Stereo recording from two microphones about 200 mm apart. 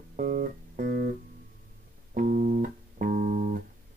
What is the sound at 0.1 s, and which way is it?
Music, 40° right (ahead or behind).